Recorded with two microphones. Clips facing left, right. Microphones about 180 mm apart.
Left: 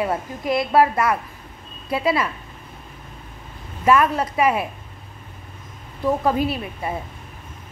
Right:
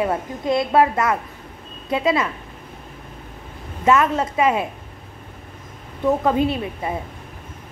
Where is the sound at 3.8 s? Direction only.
25° right (ahead or behind).